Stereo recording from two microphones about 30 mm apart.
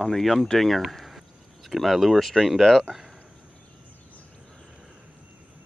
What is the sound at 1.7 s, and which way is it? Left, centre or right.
Speech, centre.